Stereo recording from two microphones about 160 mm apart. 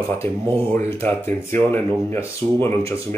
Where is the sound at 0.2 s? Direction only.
15° left (ahead or behind).